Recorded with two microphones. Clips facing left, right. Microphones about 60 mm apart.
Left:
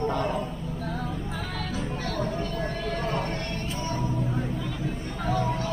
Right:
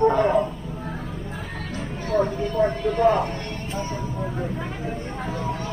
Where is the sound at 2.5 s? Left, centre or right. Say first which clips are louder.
Right 9 dB; right.